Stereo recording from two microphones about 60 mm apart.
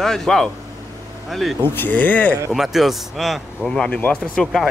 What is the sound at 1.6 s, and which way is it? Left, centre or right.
Speech, left.